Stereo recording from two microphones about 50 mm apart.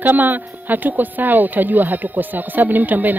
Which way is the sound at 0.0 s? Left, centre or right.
Right.